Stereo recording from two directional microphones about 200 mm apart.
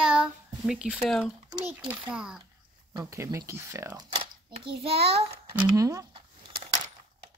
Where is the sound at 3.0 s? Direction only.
15° right (ahead or behind).